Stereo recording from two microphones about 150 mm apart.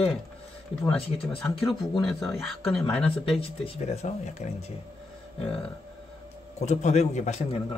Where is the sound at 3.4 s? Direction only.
45° left (ahead or behind).